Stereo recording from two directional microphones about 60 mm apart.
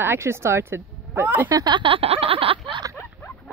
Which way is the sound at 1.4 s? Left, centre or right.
Right.